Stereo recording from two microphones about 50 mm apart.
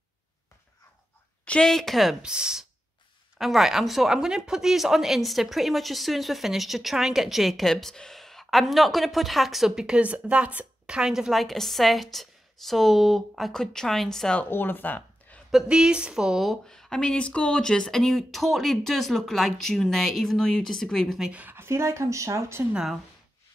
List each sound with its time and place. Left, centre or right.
1.4 s a sound: left
1.7 s speech: centre
2.2 s speech: centre
3.3 s speech: centre
9.8 s speech: right
11.0 s speech: centre
11.3 s speech: centre
14.5 s speech: left
15.7 s speech: centre
16.6 s speech: centre
21.5 s speech: right